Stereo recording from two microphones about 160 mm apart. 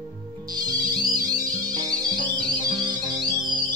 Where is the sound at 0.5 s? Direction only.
25° right (ahead or behind).